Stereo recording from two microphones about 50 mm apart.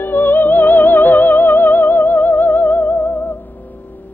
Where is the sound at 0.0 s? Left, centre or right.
Left.